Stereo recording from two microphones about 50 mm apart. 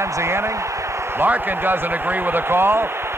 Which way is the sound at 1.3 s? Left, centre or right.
Right.